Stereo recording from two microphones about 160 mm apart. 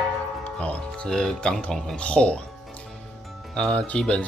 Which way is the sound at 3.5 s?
5° left (ahead or behind).